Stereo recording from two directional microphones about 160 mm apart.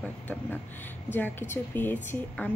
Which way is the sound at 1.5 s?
10° left (ahead or behind).